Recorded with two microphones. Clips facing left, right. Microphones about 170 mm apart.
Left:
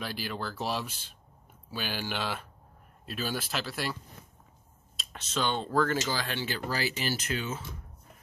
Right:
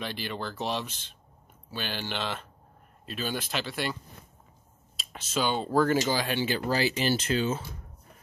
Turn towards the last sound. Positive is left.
turn(degrees=-30)  # may be behind; listen again after turning